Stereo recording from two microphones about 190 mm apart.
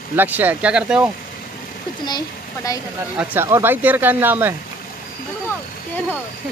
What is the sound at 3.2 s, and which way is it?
Speech, 10° right (ahead or behind).